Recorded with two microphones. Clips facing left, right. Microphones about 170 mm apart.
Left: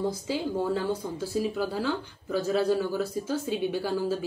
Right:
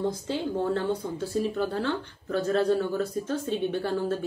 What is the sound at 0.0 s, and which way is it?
Speech, 5° left (ahead or behind).